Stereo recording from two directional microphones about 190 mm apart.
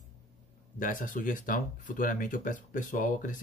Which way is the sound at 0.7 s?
45° left (ahead or behind).